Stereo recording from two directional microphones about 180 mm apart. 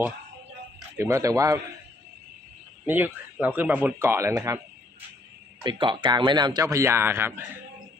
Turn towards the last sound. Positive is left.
turn(degrees=-15)  # may be behind; listen again after turning